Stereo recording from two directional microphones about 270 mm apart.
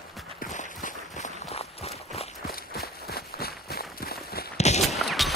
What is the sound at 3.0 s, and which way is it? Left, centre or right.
Walk, left.